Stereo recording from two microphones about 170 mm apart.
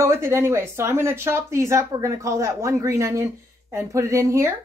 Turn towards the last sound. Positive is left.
turn(degrees=-20)  # may be behind; listen again after turning